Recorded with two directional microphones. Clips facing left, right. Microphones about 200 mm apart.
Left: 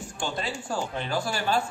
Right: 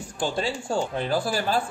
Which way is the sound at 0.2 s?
30° right (ahead or behind).